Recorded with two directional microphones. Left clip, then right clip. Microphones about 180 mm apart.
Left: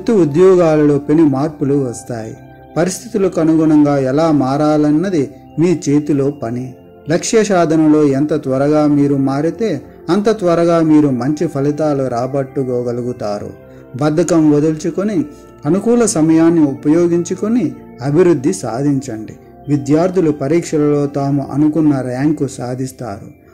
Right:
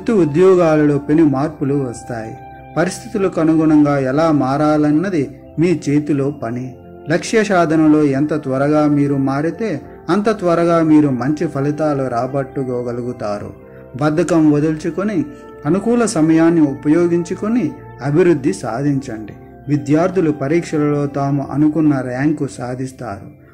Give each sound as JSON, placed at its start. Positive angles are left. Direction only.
{"t": 0.0, "sound": "a man's voice", "side_deg": 45}